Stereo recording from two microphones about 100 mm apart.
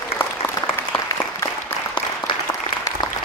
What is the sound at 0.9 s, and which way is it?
Applause, 60° left (ahead or behind).